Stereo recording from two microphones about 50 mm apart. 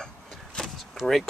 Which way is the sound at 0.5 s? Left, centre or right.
Centre.